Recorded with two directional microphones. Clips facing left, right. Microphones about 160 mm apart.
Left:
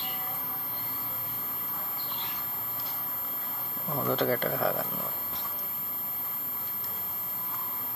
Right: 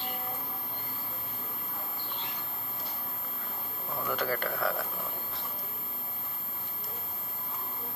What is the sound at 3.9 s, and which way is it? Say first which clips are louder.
Speech: left 5 dB; 25° left (ahead or behind).